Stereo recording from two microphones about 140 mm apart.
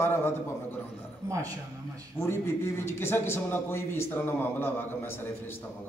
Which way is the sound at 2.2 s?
15° left (ahead or behind).